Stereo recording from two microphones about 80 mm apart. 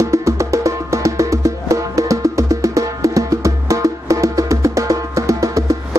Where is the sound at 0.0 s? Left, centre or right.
Right.